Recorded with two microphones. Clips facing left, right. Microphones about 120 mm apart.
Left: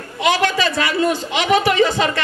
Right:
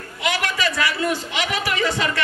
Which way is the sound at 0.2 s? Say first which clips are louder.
Left 6 dB; 30° left (ahead or behind).